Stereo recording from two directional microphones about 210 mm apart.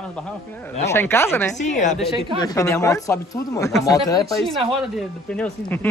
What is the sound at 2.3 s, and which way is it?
A man's voice, 15° left (ahead or behind).